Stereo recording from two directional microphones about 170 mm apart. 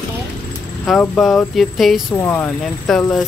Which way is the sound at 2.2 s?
10° left (ahead or behind).